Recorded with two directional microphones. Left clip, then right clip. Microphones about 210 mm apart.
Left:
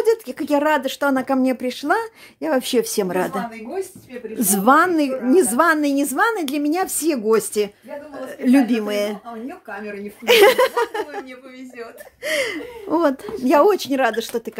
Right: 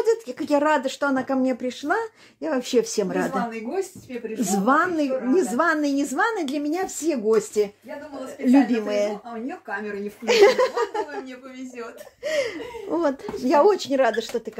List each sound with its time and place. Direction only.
0.0 s speech: 20° left (ahead or behind)
10.2 s speech: 25° left (ahead or behind)